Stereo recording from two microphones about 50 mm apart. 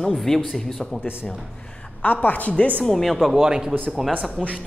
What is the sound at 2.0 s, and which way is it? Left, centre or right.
Speech, left.